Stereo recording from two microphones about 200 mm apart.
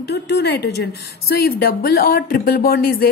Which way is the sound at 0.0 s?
55° left (ahead or behind).